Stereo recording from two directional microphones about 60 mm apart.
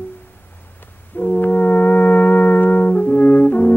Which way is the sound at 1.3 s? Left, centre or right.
Left.